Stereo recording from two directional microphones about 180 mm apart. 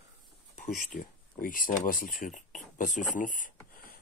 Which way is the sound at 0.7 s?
50° left (ahead or behind).